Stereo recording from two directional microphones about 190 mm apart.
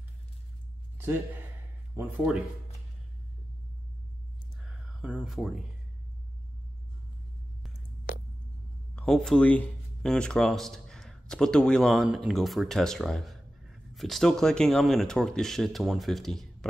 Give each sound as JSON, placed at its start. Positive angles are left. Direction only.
{"t": 2.0, "sound": "speech", "side_deg": -5}
{"t": 4.6, "sound": "a sound", "side_deg": -5}
{"t": 8.9, "sound": "speech", "side_deg": 0}